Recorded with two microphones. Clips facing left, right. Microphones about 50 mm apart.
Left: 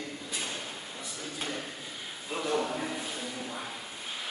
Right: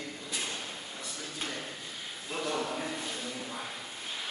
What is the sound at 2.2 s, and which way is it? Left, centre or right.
Speech, centre.